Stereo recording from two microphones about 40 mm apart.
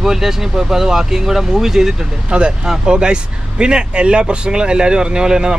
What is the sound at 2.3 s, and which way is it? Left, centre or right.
Speech, right.